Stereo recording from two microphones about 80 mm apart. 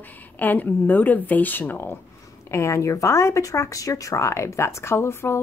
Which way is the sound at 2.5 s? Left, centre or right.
Left.